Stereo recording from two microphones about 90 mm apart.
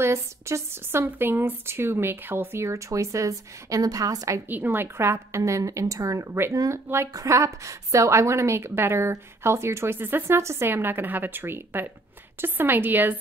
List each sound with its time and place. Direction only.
0.0 s a woman's voice: 30° right (ahead or behind)
4.5 s a woman's voice: 20° right (ahead or behind)